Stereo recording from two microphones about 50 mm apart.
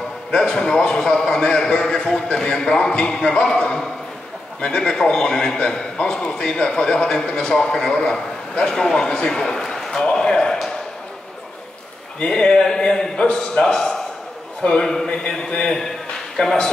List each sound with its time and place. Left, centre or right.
0.3 s a man's voice: centre
8.6 s a man's voice: centre
10.1 s a sound: centre
12.3 s a man's voice: centre